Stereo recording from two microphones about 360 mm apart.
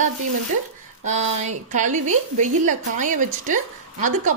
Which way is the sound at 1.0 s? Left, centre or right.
Centre.